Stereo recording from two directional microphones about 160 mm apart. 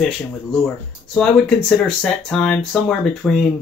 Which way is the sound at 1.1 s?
5° left (ahead or behind).